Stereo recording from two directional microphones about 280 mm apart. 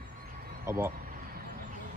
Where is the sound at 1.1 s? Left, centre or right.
Right.